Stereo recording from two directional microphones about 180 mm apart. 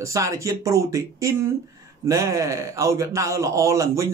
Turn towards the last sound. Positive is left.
turn(degrees=-15)  # may be behind; listen again after turning